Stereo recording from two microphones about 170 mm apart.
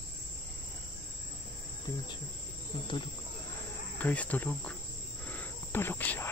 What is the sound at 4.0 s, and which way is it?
Speech, 10° left (ahead or behind).